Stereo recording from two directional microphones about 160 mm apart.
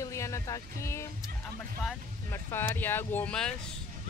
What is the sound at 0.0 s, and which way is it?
Speech, 20° left (ahead or behind).